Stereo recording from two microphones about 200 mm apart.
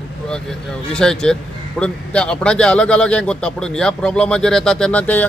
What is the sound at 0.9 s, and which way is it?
Speech, 5° left (ahead or behind).